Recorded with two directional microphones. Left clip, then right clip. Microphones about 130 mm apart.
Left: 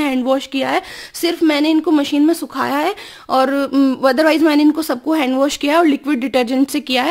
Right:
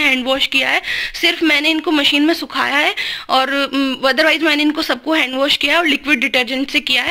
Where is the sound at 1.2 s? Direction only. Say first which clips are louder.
Right 1 dB; 40° left (ahead or behind).